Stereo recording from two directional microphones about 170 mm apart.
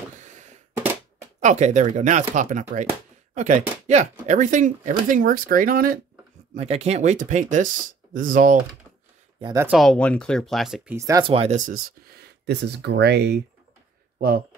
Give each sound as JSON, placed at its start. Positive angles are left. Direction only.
{"t": 0.2, "sound": "a sound", "side_deg": -45}
{"t": 1.4, "sound": "speech", "side_deg": -45}
{"t": 6.5, "sound": "speech", "side_deg": -40}
{"t": 9.4, "sound": "speech", "side_deg": -20}
{"t": 9.7, "sound": "speech", "side_deg": 0}
{"t": 11.0, "sound": "speech", "side_deg": -20}
{"t": 11.2, "sound": "speech", "side_deg": -35}
{"t": 12.2, "sound": "speech", "side_deg": -75}
{"t": 14.1, "sound": "speech", "side_deg": -60}